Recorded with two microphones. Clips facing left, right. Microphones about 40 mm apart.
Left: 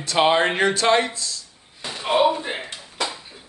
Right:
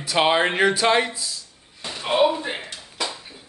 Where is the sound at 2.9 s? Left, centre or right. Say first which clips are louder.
Left 2 dB; centre.